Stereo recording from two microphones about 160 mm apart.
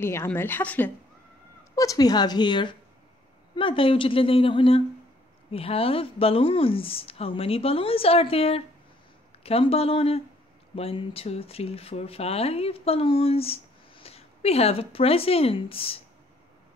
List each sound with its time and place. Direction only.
0.0 s a woman's voice: 15° left (ahead or behind)
1.8 s a woman's voice: 20° left (ahead or behind)